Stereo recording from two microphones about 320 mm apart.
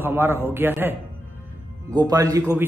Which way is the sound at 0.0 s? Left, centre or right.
Centre.